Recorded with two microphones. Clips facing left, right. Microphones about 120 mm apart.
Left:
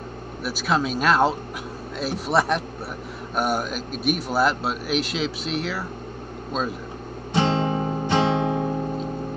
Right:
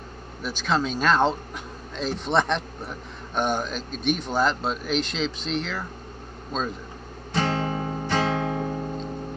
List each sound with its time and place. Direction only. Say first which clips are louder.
0.4 s speech: left 2 dB; 5° left (ahead or behind)
7.3 s guitar: left 4 dB; 20° left (ahead or behind)